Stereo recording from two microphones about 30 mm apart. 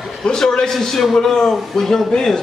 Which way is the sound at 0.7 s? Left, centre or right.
Centre.